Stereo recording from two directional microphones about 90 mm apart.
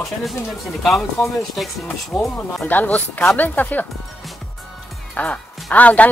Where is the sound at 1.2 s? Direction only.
30° left (ahead or behind).